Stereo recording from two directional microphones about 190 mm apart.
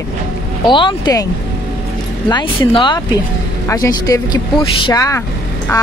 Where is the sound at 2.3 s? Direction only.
25° left (ahead or behind).